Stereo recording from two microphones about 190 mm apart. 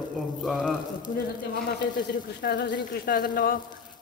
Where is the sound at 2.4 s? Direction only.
60° left (ahead or behind).